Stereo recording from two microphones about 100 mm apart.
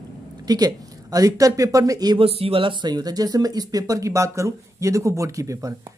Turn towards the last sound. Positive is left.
turn(degrees=-30)  # may be behind; listen again after turning